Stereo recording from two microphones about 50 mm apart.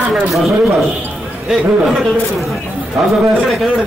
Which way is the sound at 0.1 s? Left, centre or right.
Centre.